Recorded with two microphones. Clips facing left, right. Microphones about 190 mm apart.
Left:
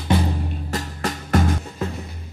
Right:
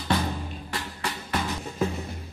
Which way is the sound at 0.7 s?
40° left (ahead or behind).